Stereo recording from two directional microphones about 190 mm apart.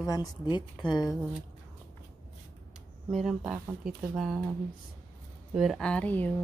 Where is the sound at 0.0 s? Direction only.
20° left (ahead or behind).